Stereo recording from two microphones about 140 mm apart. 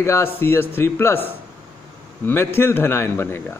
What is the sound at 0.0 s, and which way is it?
Speech, 20° left (ahead or behind).